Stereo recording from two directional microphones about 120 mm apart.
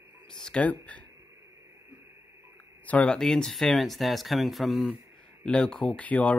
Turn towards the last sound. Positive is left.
turn(degrees=10)  # may be behind; listen again after turning